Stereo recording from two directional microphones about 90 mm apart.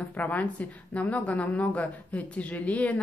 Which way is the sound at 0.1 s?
20° left (ahead or behind).